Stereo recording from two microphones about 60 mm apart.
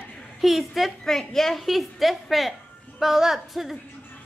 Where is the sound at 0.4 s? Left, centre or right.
Centre.